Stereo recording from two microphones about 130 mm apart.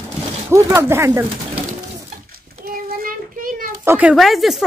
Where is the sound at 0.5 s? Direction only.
20° right (ahead or behind).